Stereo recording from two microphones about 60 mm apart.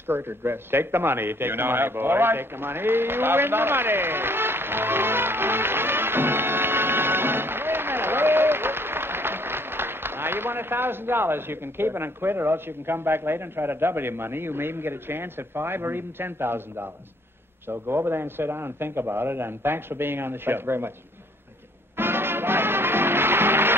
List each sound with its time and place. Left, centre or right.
0.0 s a man's voice: right
21.9 s music: right